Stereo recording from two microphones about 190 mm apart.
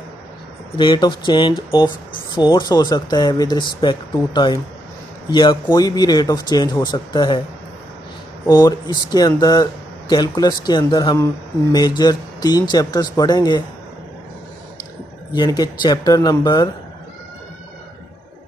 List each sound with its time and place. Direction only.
0.7 s speech: 25° left (ahead or behind)
8.5 s speech: 20° left (ahead or behind)
15.3 s speech: 20° left (ahead or behind)